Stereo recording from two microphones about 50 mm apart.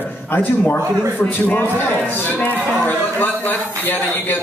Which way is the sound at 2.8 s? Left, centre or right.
Left.